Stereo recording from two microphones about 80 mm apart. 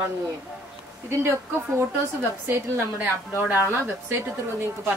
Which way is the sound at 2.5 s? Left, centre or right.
Right.